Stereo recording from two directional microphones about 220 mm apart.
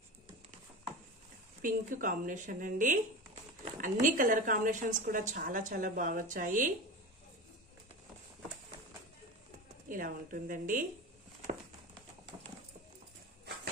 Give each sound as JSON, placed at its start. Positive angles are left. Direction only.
{"t": 1.6, "sound": "a woman's voice", "side_deg": -35}
{"t": 9.8, "sound": "a woman's voice", "side_deg": -40}